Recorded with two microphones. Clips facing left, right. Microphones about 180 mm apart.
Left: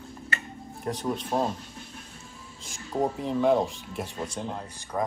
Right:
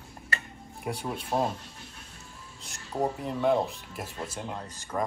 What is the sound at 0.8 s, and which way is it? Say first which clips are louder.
Speech: left 4 dB; 10° right (ahead or behind).